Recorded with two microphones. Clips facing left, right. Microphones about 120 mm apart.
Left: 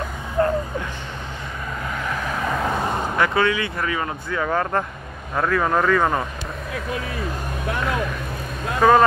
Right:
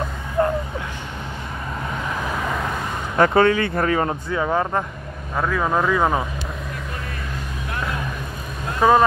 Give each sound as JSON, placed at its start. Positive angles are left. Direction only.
{"t": 0.4, "sound": "a sound", "side_deg": -20}
{"t": 3.2, "sound": "speech", "side_deg": -45}
{"t": 4.3, "sound": "speech", "side_deg": -20}
{"t": 5.3, "sound": "speech", "side_deg": -5}
{"t": 8.8, "sound": "speech", "side_deg": -15}